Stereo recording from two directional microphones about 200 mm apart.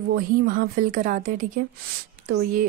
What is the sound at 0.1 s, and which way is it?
Speech, 45° right (ahead or behind).